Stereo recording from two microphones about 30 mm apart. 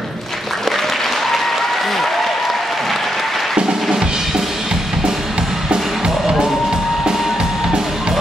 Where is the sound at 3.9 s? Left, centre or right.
Right.